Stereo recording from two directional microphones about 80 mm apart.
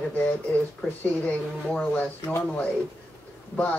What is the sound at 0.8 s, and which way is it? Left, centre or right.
Speech, centre.